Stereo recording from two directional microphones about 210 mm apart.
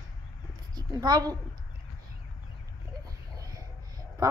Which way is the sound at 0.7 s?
20° right (ahead or behind).